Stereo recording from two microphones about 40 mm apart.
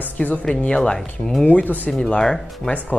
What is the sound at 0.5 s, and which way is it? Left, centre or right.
Speech, left.